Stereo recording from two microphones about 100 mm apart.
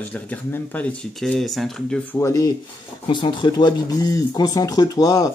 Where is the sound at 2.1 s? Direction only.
30° left (ahead or behind).